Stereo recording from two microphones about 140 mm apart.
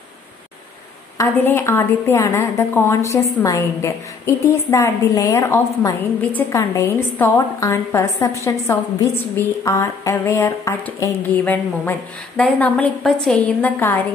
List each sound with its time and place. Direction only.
1.1 s a woman's voice: 20° left (ahead or behind)